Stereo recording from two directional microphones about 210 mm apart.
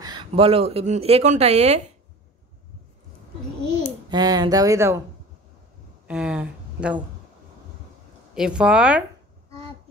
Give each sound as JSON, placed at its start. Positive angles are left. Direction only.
{"t": 0.0, "sound": "speech", "side_deg": -20}
{"t": 4.1, "sound": "speech", "side_deg": -20}
{"t": 6.0, "sound": "speech", "side_deg": -5}
{"t": 8.4, "sound": "speech", "side_deg": -5}